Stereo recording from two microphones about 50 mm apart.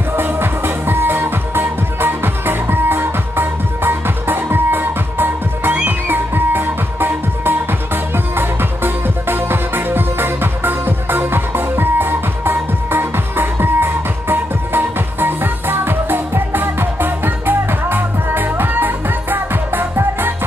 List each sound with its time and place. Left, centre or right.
0.1 s music: right